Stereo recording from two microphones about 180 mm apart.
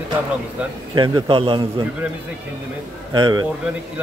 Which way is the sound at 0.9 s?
25° right (ahead or behind).